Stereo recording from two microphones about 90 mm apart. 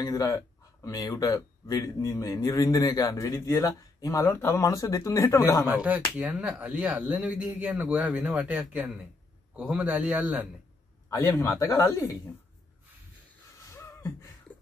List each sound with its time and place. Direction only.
0.0 s speech: 45° left (ahead or behind)
5.8 s speech: 15° right (ahead or behind)
11.1 s speech: 25° left (ahead or behind)
13.7 s a sound: 35° left (ahead or behind)